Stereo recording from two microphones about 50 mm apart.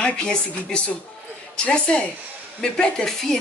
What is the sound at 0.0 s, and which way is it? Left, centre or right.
A woman's voice, centre.